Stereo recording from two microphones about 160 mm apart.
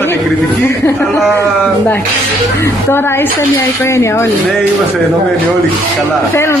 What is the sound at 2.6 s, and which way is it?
A woman's voice, 15° left (ahead or behind).